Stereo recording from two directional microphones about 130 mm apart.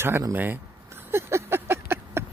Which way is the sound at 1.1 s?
20° right (ahead or behind).